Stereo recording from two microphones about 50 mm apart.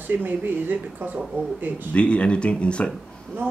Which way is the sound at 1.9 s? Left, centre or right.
Left.